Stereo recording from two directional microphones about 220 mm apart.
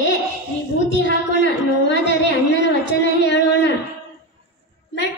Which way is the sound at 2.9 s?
55° left (ahead or behind).